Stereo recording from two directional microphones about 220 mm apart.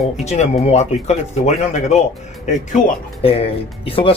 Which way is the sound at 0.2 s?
30° left (ahead or behind).